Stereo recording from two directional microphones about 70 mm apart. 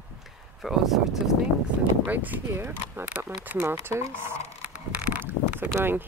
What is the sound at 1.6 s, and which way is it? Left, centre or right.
Speech, right.